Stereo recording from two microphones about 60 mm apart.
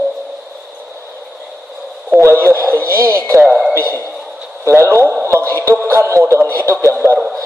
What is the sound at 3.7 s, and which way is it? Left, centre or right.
Speech, right.